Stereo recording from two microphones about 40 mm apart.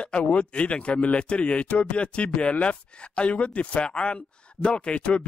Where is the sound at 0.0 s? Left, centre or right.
Left.